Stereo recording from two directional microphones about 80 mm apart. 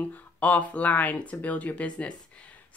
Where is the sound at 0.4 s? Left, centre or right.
Centre.